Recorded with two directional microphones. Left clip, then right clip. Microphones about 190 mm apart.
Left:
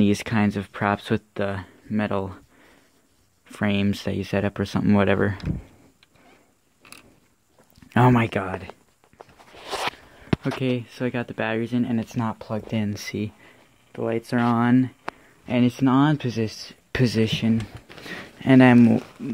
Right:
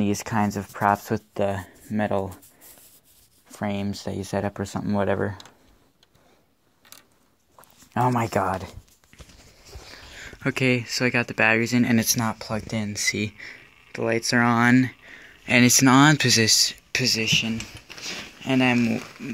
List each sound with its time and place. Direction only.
0.0 s speech: 35° left (ahead or behind)
1.3 s speech: 5° left (ahead or behind)
3.4 s speech: 30° left (ahead or behind)
7.9 s speech: 50° left (ahead or behind)
9.1 s walk: 10° right (ahead or behind)
9.9 s a sound: 5° right (ahead or behind)
10.2 s speech: 5° right (ahead or behind)
12.1 s speech: centre (ahead or behind)
12.7 s speech: 20° left (ahead or behind)
13.4 s speech: 5° right (ahead or behind)
16.9 s speech: 45° left (ahead or behind)
18.9 s speech: 5° right (ahead or behind)